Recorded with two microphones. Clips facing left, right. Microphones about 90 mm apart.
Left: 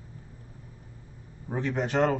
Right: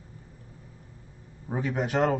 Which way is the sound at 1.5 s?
5° right (ahead or behind).